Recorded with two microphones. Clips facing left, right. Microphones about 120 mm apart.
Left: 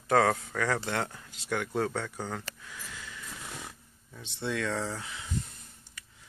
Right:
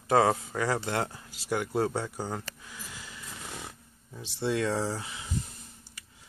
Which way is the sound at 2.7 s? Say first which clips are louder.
Even; 10° right (ahead or behind).